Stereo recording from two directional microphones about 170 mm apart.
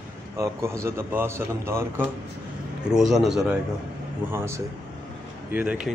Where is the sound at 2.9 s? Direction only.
Centre (ahead or behind).